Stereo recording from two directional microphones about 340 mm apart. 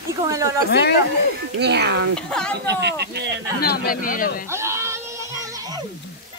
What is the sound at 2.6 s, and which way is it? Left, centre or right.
Speech, right.